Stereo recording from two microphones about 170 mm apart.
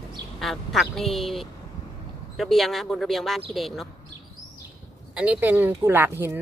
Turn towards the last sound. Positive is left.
turn(degrees=-10)  # may be behind; listen again after turning